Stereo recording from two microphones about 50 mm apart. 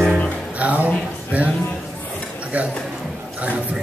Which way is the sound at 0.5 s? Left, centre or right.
Right.